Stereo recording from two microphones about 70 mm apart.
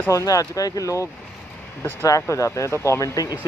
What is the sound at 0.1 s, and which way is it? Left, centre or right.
Speech, left.